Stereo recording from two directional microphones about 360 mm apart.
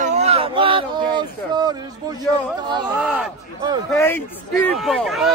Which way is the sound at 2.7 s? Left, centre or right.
Centre.